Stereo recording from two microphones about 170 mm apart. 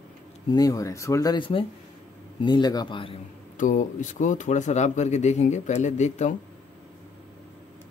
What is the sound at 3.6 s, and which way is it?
Speech, 50° left (ahead or behind).